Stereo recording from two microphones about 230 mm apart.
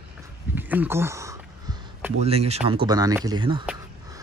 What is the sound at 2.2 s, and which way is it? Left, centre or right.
Speech, right.